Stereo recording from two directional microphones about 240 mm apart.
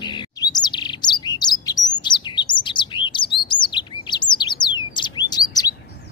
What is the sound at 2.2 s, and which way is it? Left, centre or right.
Chirp, centre.